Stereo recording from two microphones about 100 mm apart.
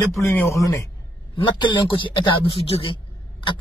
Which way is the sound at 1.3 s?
55° left (ahead or behind).